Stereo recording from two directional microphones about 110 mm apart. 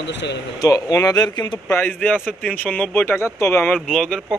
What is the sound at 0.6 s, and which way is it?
Speech, 30° left (ahead or behind).